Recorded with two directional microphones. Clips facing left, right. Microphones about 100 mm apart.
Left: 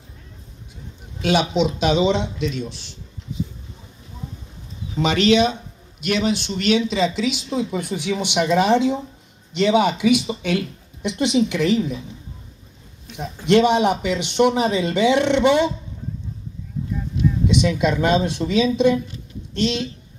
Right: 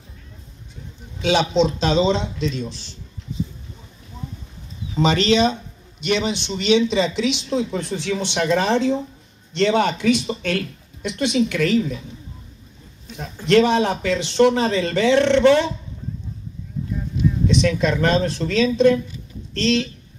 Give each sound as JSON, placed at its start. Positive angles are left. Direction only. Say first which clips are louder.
{"t": 1.2, "sound": "a man's voice", "louder": "right 1 dB", "side_deg": 10}
{"t": 5.0, "sound": "a man's voice", "louder": "even", "side_deg": 10}
{"t": 13.1, "sound": "a man's voice", "louder": "even", "side_deg": 15}
{"t": 17.5, "sound": "a man's voice", "louder": "even", "side_deg": 15}